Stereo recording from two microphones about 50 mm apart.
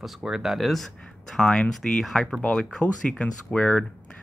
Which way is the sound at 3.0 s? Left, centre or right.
Left.